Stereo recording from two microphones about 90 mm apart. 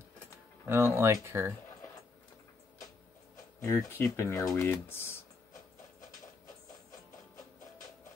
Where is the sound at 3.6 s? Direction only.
30° left (ahead or behind).